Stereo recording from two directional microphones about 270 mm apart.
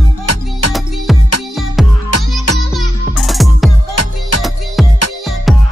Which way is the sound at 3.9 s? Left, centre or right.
Left.